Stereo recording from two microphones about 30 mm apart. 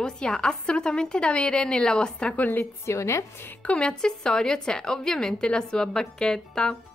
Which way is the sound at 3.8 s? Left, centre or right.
Left.